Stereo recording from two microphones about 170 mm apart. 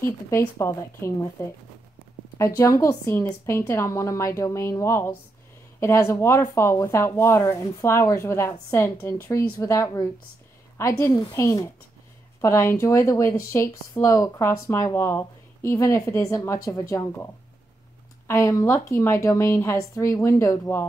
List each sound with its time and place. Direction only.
0.0 s speech: 15° left (ahead or behind)
2.3 s speech: 15° left (ahead or behind)